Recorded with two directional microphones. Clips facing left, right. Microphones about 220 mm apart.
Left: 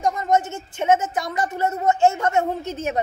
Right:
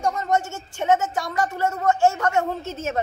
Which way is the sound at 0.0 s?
15° left (ahead or behind).